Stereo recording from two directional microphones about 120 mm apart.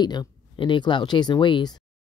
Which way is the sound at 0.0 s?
35° left (ahead or behind).